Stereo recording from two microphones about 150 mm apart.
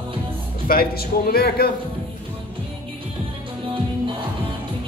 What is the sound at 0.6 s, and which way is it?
A man's voice, 85° left.